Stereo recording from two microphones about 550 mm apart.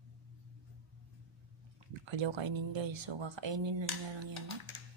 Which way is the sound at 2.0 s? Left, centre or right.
Right.